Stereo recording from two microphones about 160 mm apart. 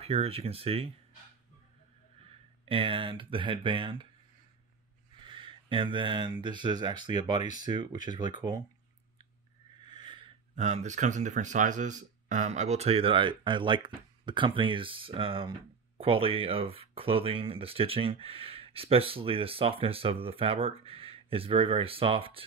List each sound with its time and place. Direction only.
0.0 s speech: 40° right (ahead or behind)
2.6 s speech: 35° right (ahead or behind)
5.2 s a sound: 30° right (ahead or behind)
6.4 s speech: 30° right (ahead or behind)
9.8 s a sound: 30° right (ahead or behind)
10.5 s speech: 45° right (ahead or behind)